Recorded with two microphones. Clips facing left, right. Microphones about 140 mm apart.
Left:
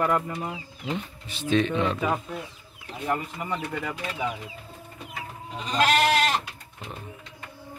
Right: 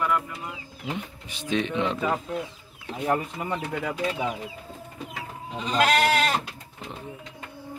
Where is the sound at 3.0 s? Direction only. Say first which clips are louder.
Right 3 dB; 25° right (ahead or behind).